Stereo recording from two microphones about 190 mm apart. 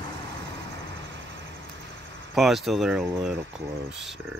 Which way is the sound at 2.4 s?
Centre (ahead or behind).